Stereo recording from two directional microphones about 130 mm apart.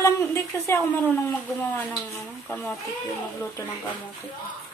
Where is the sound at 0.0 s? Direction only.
20° left (ahead or behind).